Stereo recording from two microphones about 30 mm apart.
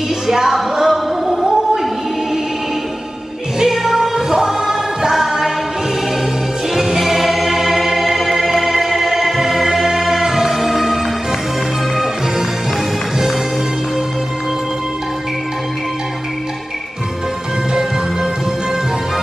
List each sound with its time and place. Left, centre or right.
0.3 s music: centre
3.5 s music: centre
6.7 s choir: centre
9.4 s music: centre